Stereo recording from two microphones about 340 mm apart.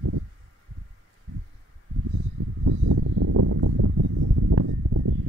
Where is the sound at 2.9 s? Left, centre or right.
Right.